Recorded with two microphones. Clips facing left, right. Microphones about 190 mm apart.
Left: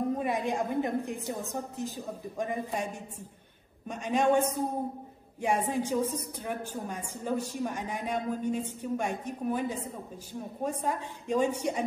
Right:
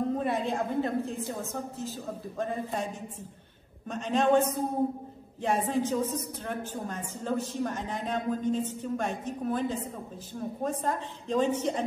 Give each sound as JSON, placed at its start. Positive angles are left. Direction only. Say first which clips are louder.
{"t": 0.2, "sound": "a woman's voice", "louder": "right 1 dB", "side_deg": 15}